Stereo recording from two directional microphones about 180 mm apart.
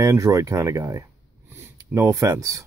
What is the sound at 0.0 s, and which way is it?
Speech, 15° right (ahead or behind).